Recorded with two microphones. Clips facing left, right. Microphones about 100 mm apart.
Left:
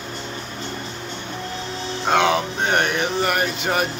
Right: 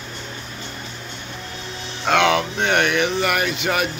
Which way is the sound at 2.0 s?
30° left (ahead or behind).